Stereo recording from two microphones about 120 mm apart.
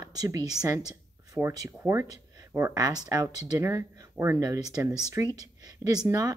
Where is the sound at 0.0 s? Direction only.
30° right (ahead or behind).